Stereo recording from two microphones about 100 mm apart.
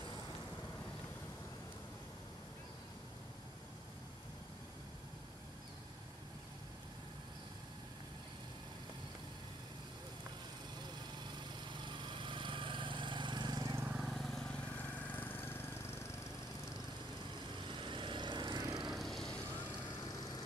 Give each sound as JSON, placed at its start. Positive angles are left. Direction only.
{"t": 11.8, "sound": "lawn mower", "side_deg": -50}
{"t": 13.9, "sound": "vehicle", "side_deg": 0}
{"t": 17.6, "sound": "vehicle", "side_deg": -55}
{"t": 18.9, "sound": "vehicle", "side_deg": 0}
{"t": 20.0, "sound": "vehicle", "side_deg": 40}